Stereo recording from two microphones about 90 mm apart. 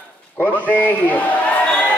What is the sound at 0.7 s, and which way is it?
Speech, 20° left (ahead or behind).